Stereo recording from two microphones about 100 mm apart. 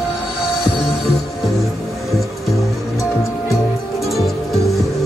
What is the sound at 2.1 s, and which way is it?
Music, centre (ahead or behind).